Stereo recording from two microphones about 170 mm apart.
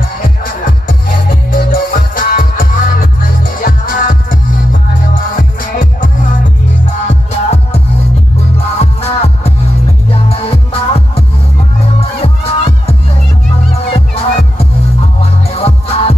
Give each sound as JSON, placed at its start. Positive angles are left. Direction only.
{"t": 0.2, "sound": "music", "side_deg": 55}
{"t": 7.1, "sound": "music", "side_deg": 40}
{"t": 13.9, "sound": "music", "side_deg": 35}